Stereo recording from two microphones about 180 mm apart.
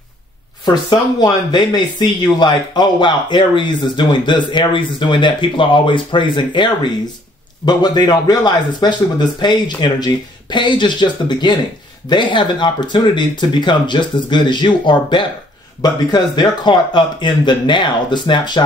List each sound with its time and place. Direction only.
0.7 s speech: 25° left (ahead or behind)